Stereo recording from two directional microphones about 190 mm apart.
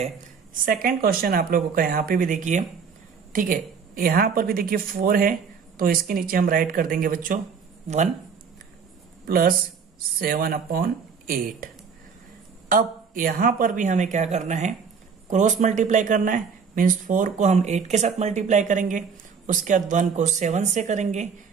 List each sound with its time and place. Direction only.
0.7 s speech: 50° right (ahead or behind)
9.2 s speech: 50° right (ahead or behind)